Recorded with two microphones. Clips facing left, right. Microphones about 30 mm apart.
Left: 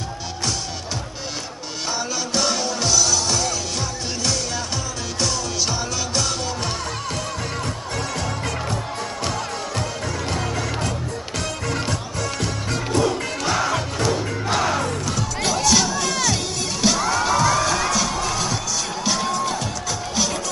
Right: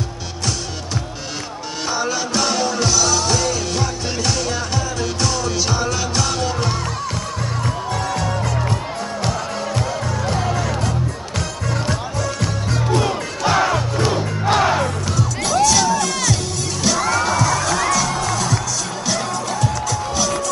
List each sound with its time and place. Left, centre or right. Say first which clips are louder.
1.9 s music: right 4 dB; centre
10.3 s music: right 5 dB; centre
12.9 s music: right 1 dB; centre
13.5 s crowd: right 5 dB; centre
14.4 s music: right 6 dB; centre
15.1 s music: right 8 dB; centre